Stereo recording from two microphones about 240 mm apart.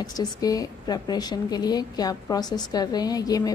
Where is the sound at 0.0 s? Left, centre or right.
Centre.